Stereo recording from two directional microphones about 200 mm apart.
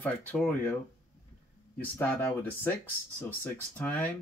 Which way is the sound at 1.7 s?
10° left (ahead or behind).